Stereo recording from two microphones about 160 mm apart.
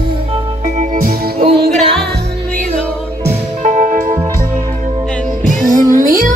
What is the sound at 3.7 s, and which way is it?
Music, 55° right (ahead or behind).